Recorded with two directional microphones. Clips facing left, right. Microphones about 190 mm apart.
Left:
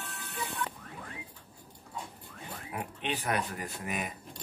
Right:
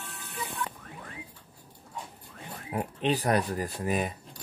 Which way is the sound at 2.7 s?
35° right (ahead or behind).